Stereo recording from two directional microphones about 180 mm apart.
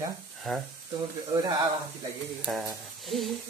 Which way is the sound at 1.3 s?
20° right (ahead or behind).